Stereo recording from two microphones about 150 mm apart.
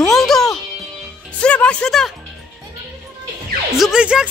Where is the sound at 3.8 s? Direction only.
5° right (ahead or behind).